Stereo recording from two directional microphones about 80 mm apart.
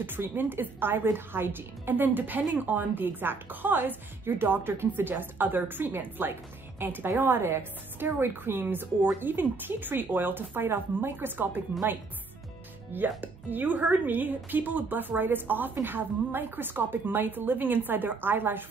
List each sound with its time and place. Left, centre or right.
0.0 s a woman's voice: right
12.9 s a woman's voice: right